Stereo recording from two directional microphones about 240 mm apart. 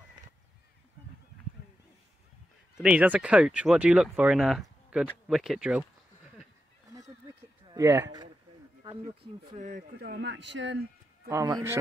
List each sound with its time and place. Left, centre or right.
2.8 s speech: centre
6.9 s a sound: centre
8.8 s speech: right
11.2 s a man's voice: centre